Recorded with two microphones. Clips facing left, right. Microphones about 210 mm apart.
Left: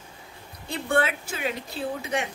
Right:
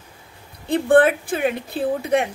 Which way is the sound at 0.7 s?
55° right (ahead or behind).